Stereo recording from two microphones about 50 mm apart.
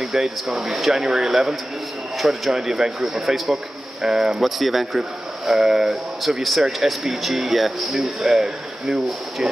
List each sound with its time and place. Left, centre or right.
0.0 s speech: centre